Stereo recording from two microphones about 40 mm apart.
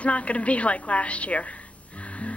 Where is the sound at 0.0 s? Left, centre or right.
Left.